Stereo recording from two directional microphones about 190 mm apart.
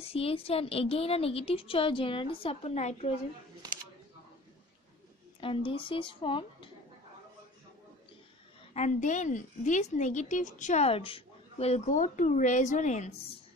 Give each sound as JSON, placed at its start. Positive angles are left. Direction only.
{"t": 0.0, "sound": "a woman's voice", "side_deg": 30}
{"t": 5.4, "sound": "a woman's voice", "side_deg": 25}
{"t": 8.7, "sound": "a woman's voice", "side_deg": 40}